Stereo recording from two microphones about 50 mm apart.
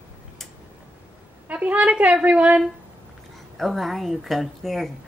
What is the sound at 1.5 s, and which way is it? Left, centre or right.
A woman's voice, right.